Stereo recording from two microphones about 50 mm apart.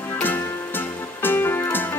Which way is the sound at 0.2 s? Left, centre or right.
Left.